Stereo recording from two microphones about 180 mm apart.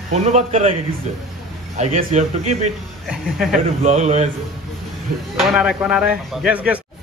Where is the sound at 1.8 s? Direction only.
40° right (ahead or behind).